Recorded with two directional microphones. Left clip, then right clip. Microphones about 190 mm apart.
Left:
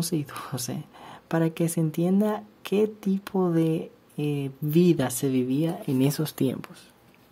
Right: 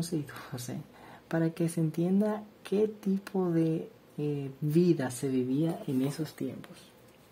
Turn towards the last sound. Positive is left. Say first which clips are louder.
# left 9 dB
turn(degrees=25)  # may be behind; listen again after turning